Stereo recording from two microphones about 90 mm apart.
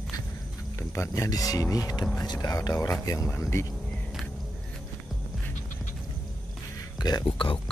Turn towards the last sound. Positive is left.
turn(degrees=70)  # may be behind; listen again after turning